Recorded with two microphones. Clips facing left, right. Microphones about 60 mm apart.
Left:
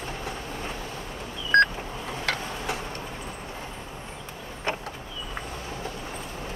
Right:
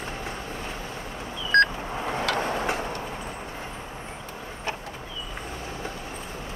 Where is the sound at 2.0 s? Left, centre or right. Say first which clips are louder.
Right 9 dB; right.